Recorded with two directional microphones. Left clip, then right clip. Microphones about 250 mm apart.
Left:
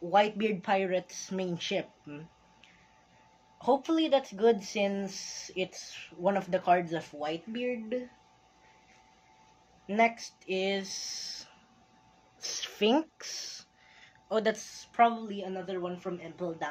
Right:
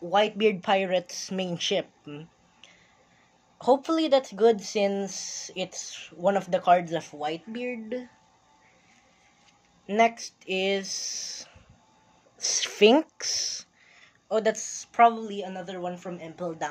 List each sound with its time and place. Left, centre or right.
0.1 s speech: right
9.8 s speech: right